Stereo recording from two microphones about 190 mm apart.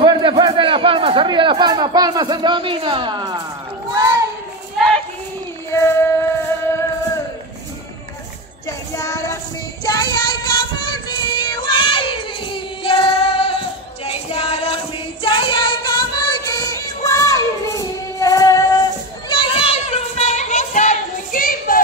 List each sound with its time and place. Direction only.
0.0 s a man's voice: 25° right (ahead or behind)
4.7 s a sound: 5° left (ahead or behind)
5.7 s child singing: 15° left (ahead or behind)
8.6 s child singing: 15° left (ahead or behind)
14.0 s music: 30° left (ahead or behind)
19.2 s child singing: 25° left (ahead or behind); by 21.8 s 50° left (ahead or behind)